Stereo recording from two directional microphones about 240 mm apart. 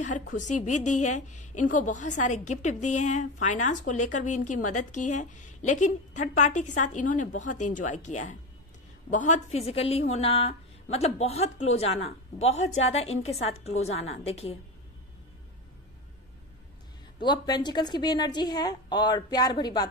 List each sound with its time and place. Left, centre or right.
0.0 s a woman's voice: left
0.7 s a woman's voice: left
1.2 s a woman's voice: left
17.2 s a woman's voice: centre